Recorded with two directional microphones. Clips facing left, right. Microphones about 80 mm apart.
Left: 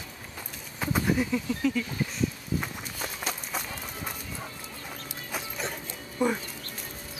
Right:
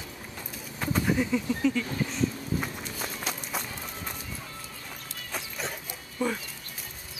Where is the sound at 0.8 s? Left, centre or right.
Centre.